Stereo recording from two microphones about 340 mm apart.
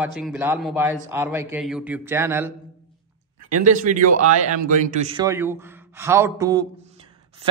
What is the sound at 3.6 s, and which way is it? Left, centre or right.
A man's voice, right.